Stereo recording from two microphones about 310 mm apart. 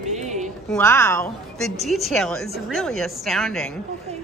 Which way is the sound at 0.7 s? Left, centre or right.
Centre.